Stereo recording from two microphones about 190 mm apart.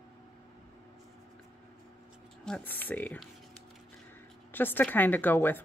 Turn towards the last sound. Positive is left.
turn(degrees=10)  # may be behind; listen again after turning